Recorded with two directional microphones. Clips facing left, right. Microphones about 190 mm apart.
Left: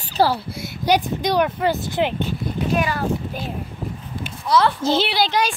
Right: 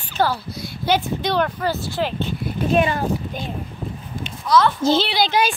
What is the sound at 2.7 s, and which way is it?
Speech, 25° right (ahead or behind).